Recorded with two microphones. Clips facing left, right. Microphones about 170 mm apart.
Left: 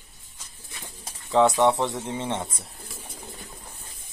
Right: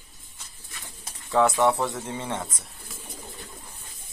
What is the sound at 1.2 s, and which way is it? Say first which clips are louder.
Speech: left 2 dB; 20° left (ahead or behind).